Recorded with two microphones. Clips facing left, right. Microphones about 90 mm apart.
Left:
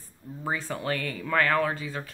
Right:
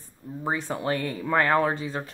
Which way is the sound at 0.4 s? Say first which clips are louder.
Right 3 dB; 20° right (ahead or behind).